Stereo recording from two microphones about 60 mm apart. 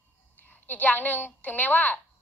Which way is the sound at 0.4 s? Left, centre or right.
Left.